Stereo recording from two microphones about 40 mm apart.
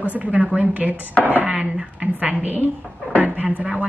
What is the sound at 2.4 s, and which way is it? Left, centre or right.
Speech, right.